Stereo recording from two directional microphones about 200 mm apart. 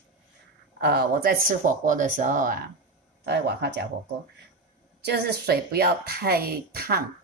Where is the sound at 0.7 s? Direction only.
50° right (ahead or behind).